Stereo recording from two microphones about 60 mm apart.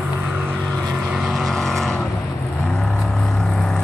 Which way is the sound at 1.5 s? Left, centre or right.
Centre.